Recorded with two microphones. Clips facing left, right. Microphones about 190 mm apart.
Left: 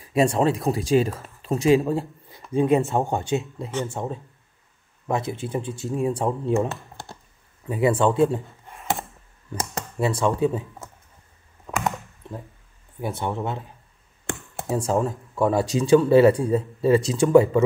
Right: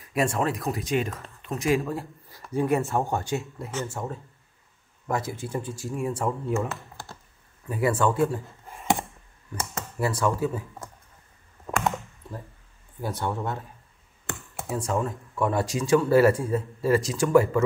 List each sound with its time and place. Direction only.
0.0 s speech: 30° left (ahead or behind)
8.6 s a sound: centre (ahead or behind)
9.9 s speech: 25° left (ahead or behind)
11.7 s a sound: 10° right (ahead or behind)
13.0 s speech: 20° left (ahead or behind)
14.7 s speech: 30° left (ahead or behind)